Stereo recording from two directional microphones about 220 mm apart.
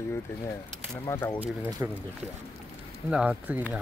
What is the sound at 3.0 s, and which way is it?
Speech, 5° right (ahead or behind).